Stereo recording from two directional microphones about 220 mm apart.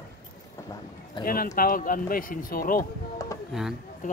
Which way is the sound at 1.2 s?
40° left (ahead or behind).